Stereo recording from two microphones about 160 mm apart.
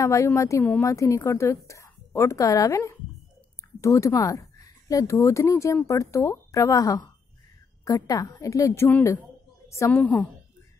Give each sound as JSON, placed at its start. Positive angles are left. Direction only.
{"t": 0.0, "sound": "a woman's voice", "side_deg": 20}